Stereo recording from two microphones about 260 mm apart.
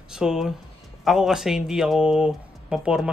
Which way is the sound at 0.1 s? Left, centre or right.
Centre.